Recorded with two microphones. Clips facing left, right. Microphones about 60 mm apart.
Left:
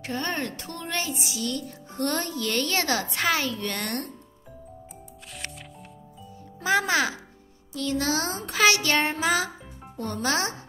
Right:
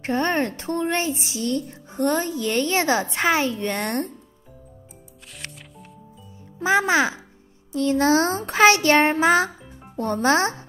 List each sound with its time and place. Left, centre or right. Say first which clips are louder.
0.0 s a woman's voice: right 7 dB; right
5.4 s music: even; centre
6.6 s a woman's voice: right 4 dB; right